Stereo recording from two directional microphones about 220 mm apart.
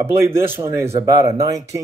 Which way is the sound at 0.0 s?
10° right (ahead or behind).